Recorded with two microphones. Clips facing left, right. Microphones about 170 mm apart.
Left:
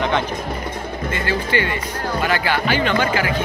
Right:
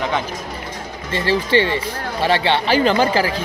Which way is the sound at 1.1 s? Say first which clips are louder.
Right 5 dB; 30° right (ahead or behind).